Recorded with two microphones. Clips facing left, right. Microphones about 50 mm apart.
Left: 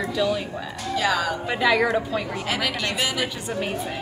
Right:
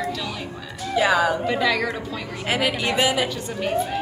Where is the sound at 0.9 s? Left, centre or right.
Centre.